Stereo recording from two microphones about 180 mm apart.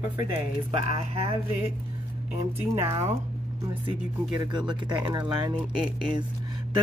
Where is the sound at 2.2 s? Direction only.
10° right (ahead or behind).